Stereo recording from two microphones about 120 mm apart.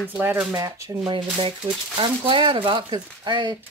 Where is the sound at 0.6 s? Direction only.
30° right (ahead or behind).